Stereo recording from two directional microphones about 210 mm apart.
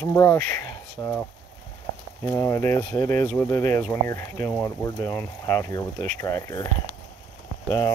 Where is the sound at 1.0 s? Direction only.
10° left (ahead or behind).